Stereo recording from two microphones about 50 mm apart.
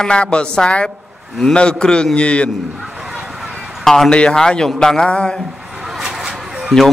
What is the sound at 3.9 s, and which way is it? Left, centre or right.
Speech, centre.